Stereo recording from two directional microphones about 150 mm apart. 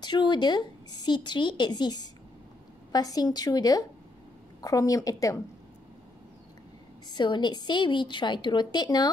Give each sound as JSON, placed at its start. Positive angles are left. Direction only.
{"t": 0.0, "sound": "speech", "side_deg": 30}
{"t": 7.1, "sound": "a woman's voice", "side_deg": 30}